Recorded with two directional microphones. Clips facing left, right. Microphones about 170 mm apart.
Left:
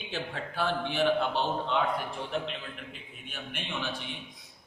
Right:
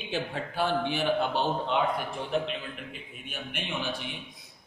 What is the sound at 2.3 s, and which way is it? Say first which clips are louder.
Speech: right 5 dB; 15° right (ahead or behind).